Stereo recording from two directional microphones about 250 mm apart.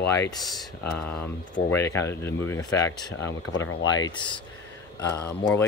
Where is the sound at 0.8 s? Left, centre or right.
Left.